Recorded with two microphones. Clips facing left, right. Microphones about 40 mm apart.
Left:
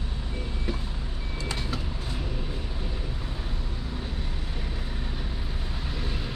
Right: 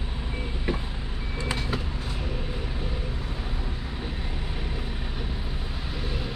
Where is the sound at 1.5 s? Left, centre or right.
Centre.